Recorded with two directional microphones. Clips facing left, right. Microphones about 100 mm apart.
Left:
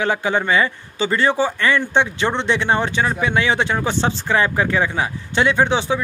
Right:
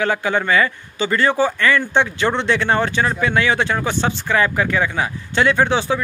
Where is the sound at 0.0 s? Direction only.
25° left (ahead or behind).